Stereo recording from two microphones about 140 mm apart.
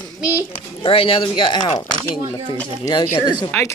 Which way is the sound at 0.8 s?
40° left (ahead or behind).